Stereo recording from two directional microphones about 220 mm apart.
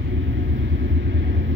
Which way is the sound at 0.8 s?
55° right (ahead or behind).